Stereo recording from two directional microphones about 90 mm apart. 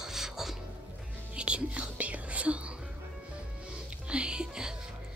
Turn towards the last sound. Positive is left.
turn(degrees=-5)  # may be behind; listen again after turning